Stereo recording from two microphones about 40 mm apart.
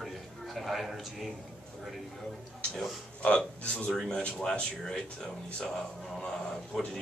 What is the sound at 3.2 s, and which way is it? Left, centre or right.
Speech, left.